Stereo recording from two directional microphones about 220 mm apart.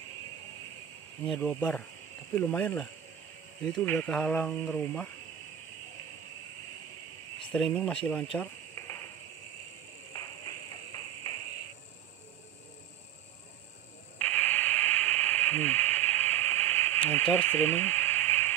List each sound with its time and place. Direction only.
1.2 s speech: 5° left (ahead or behind)
7.5 s speech: 5° left (ahead or behind)
10.1 s a sound: 15° left (ahead or behind)
14.1 s radio: 5° left (ahead or behind)